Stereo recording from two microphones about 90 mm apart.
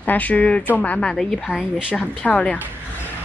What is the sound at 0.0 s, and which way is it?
A woman's voice, 20° left (ahead or behind).